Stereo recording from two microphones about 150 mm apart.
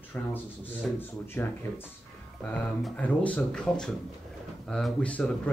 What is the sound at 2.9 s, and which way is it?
A man's voice, 10° left (ahead or behind).